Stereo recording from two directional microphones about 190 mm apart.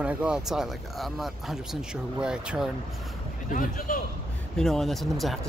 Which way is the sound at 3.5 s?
45° left (ahead or behind).